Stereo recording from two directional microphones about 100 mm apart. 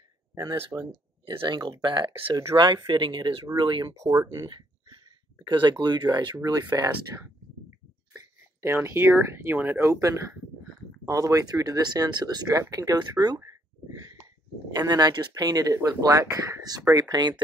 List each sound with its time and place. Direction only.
0.5 s speech: 45° right (ahead or behind)
3.9 s speech: 30° right (ahead or behind)
5.4 s speech: 50° right (ahead or behind)
7.1 s speech: 20° right (ahead or behind)
8.6 s speech: 25° right (ahead or behind)
14.7 s speech: 40° right (ahead or behind)